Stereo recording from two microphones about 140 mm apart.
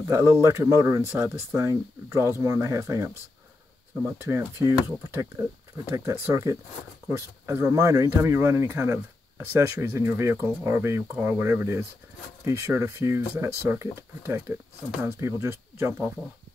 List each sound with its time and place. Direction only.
0.1 s speech: 20° right (ahead or behind)